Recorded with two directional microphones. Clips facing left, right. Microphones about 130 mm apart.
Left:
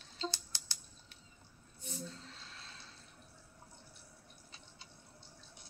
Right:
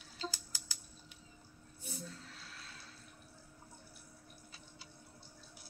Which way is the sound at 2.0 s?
25° left (ahead or behind).